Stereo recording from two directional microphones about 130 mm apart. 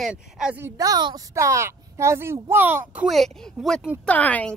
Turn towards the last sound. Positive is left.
turn(degrees=10)  # may be behind; listen again after turning